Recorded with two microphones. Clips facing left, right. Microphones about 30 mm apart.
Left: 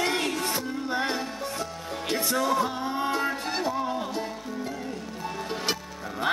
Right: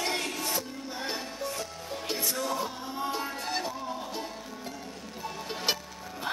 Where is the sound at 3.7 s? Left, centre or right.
Left.